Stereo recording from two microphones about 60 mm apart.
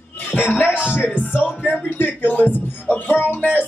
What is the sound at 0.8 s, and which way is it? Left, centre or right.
Speech, left.